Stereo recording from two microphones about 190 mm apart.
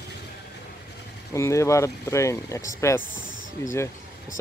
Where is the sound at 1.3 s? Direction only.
15° left (ahead or behind).